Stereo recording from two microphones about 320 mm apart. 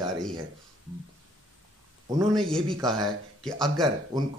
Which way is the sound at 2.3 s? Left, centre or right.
Centre.